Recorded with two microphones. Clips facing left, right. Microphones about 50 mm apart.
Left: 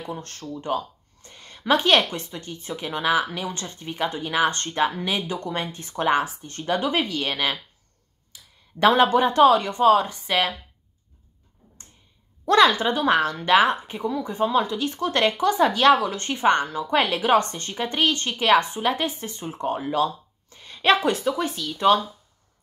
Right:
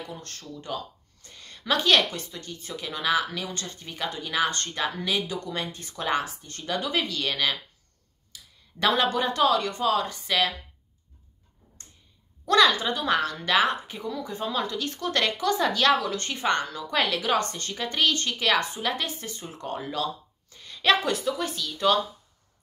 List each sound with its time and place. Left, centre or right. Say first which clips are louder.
0.0 s speech: left 5 dB; left
12.4 s speech: left 3 dB; left